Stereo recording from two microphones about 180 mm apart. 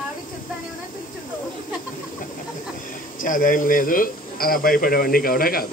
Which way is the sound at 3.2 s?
50° left (ahead or behind).